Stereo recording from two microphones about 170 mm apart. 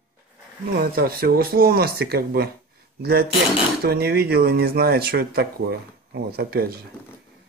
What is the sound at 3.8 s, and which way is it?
Speech, 65° right (ahead or behind).